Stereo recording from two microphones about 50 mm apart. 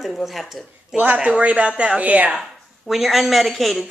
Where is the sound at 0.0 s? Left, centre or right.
Centre.